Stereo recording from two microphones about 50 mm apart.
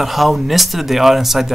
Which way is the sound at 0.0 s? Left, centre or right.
Centre.